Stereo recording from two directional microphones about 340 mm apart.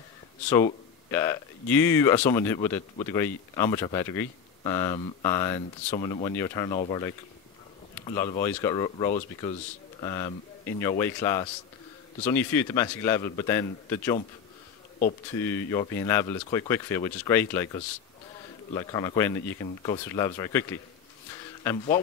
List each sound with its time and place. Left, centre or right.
0.5 s speech: centre
15.3 s speech: centre
18.7 s speech: centre
21.6 s speech: centre